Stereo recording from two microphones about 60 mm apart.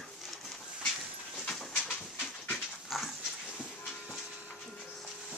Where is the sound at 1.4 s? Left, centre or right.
Centre.